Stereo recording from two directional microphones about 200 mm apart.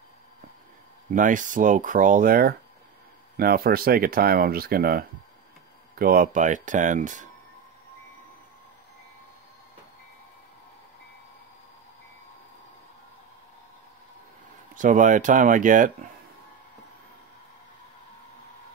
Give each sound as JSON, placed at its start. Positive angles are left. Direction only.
{"t": 1.1, "sound": "speech", "side_deg": -40}
{"t": 14.8, "sound": "speech", "side_deg": -40}